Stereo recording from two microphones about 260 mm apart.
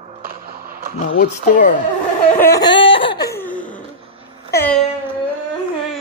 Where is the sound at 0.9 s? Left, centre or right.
Left.